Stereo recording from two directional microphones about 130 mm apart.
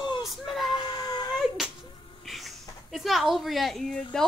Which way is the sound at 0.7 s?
35° left (ahead or behind).